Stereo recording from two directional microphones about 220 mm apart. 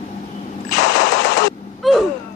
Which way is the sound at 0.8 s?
55° left (ahead or behind).